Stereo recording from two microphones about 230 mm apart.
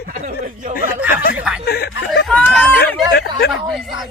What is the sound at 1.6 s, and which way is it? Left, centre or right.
Snicker, left.